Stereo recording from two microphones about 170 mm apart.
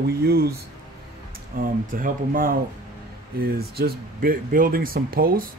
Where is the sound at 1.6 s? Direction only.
55° right (ahead or behind).